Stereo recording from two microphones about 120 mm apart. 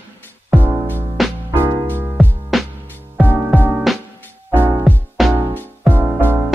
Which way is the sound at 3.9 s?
Centre (ahead or behind).